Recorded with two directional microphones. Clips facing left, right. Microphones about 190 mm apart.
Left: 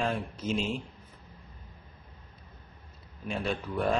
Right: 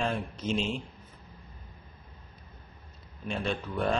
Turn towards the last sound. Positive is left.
turn(degrees=0)  # may be behind; listen again after turning